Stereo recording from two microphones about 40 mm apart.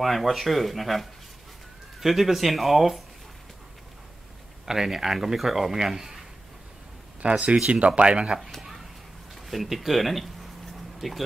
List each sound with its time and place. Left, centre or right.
0.0 s speech: centre
4.6 s speech: centre
7.2 s speech: right
8.4 s a sound: centre
9.3 s speech: centre